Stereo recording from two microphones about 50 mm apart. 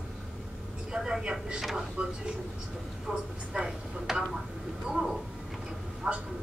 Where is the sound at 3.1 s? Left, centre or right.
Centre.